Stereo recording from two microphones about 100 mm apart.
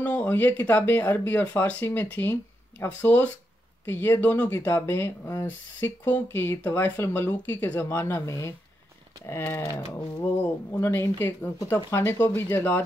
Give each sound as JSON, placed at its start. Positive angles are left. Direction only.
{"t": 0.0, "sound": "speech", "side_deg": 15}